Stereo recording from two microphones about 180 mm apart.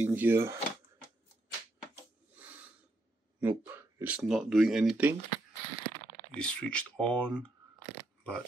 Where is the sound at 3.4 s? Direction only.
10° right (ahead or behind).